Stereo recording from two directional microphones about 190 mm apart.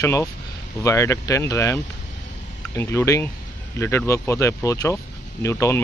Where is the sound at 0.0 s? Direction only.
15° left (ahead or behind).